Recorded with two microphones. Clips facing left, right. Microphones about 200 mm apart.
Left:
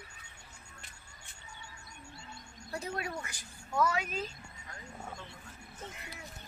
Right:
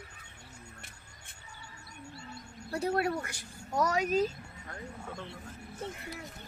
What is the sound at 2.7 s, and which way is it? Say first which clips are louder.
Speech: right 8 dB; 60° right (ahead or behind).